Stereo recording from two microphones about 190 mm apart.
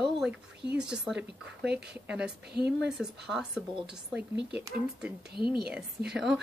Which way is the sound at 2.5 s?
55° right (ahead or behind).